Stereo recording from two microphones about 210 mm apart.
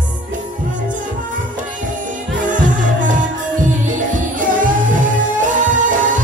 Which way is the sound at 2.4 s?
40° right (ahead or behind).